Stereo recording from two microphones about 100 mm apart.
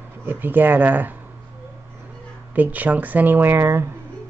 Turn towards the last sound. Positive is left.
turn(degrees=-25)  # may be behind; listen again after turning